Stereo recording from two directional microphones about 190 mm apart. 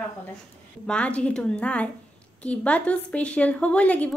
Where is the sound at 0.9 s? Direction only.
5° left (ahead or behind).